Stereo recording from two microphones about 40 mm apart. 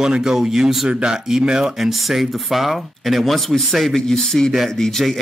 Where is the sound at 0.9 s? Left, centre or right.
Right.